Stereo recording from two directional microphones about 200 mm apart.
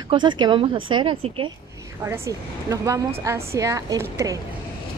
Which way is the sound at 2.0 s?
15° right (ahead or behind).